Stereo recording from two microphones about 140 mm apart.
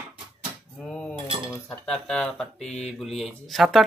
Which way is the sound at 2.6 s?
50° left (ahead or behind).